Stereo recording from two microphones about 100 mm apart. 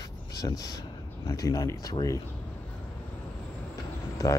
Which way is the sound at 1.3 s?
35° left (ahead or behind).